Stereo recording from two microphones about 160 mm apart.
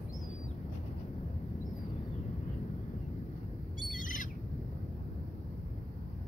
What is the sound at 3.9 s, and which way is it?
Owl, 55° left (ahead or behind).